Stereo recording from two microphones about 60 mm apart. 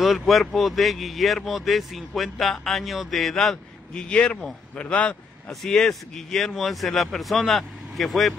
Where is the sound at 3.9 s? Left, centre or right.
Left.